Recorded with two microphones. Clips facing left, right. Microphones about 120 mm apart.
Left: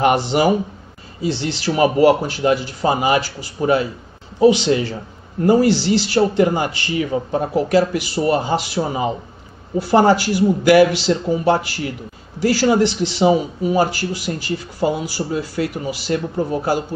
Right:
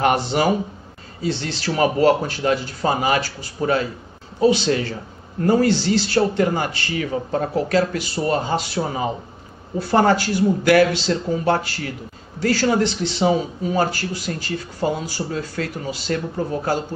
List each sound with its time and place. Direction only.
0.0 s speech: 15° left (ahead or behind)